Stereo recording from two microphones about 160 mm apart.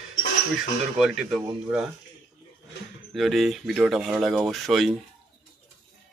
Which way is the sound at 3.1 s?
Centre (ahead or behind).